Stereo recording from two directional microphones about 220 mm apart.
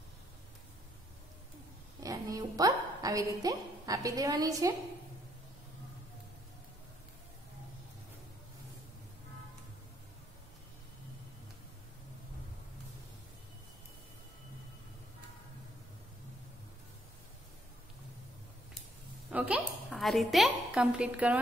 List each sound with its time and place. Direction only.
2.0 s a woman's voice: 15° right (ahead or behind)
19.3 s a woman's voice: 5° right (ahead or behind)